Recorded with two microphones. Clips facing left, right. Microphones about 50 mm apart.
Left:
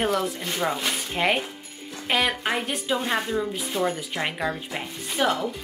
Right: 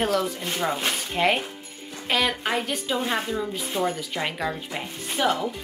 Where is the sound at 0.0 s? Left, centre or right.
Centre.